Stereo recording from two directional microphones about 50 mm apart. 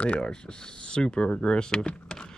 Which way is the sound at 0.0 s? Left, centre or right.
Centre.